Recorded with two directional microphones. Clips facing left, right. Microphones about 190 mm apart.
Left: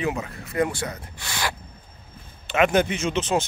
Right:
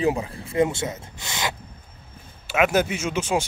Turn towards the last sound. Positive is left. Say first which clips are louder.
# left 1 dB
turn(degrees=-10)  # may be behind; listen again after turning